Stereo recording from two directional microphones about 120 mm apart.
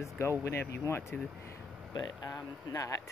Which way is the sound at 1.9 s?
30° left (ahead or behind).